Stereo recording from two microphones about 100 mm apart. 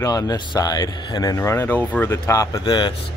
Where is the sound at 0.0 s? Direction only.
40° left (ahead or behind).